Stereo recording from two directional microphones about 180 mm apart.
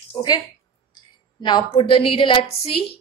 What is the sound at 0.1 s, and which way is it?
Speech, 25° left (ahead or behind).